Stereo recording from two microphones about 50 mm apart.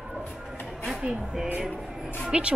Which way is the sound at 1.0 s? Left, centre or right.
Centre.